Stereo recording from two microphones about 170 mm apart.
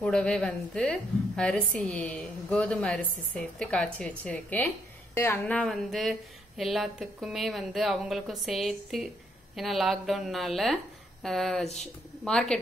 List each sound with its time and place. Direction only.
0.0 s a woman's voice: 5° left (ahead or behind)